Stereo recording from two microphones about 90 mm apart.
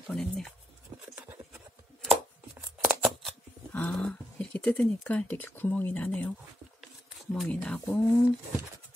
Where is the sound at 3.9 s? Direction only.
10° left (ahead or behind).